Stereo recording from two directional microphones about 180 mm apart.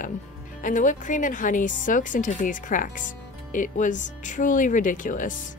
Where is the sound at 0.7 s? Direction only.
45° left (ahead or behind).